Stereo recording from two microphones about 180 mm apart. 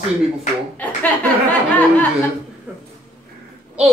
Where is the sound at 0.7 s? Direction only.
10° left (ahead or behind).